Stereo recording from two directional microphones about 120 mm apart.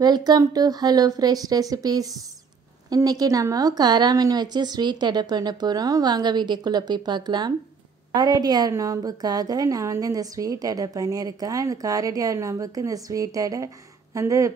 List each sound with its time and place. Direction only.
0.0 s a woman's voice: 35° right (ahead or behind)